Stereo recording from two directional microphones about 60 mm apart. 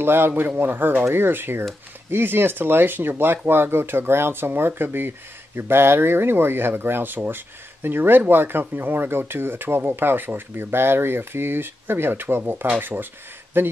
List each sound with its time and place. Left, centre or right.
0.0 s speech: right